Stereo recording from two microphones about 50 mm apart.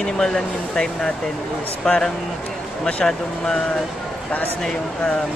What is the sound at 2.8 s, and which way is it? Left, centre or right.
Speech, centre.